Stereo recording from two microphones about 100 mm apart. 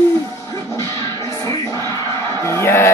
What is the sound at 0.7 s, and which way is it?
Music, 35° left (ahead or behind).